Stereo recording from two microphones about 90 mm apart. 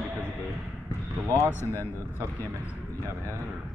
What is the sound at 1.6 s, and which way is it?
Speech, 25° left (ahead or behind).